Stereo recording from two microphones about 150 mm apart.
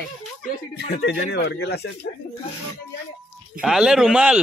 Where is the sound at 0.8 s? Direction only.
90° left.